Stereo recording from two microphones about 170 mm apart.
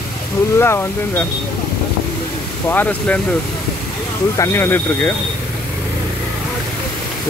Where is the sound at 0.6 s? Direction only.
15° left (ahead or behind).